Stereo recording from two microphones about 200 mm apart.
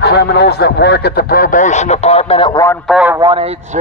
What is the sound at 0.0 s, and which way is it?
A man's voice, 55° left (ahead or behind).